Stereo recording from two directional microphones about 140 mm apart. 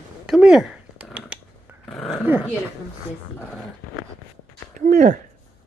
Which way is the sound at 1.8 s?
Centre (ahead or behind).